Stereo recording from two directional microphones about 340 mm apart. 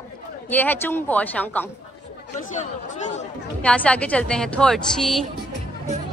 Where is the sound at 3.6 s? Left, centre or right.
Centre.